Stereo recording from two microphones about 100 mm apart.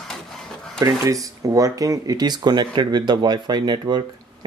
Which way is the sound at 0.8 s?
35° right (ahead or behind).